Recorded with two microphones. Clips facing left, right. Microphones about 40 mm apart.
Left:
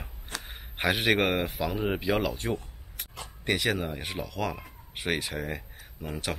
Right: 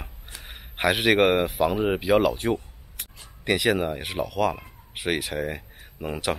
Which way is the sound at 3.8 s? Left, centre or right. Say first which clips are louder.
Right 6 dB; centre.